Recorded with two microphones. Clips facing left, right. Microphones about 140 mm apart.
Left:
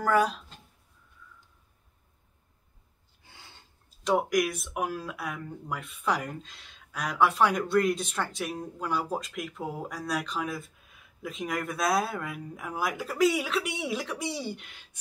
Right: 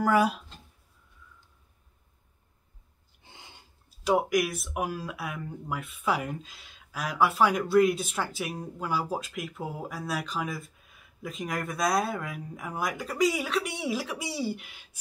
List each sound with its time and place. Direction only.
0.0 s speech: 10° right (ahead or behind)
3.3 s a sound: 15° right (ahead or behind)
4.0 s speech: 5° right (ahead or behind)